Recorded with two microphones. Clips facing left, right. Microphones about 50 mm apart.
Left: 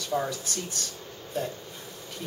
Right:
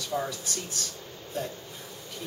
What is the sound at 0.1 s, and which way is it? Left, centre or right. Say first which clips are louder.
Speech: left 3 dB; centre.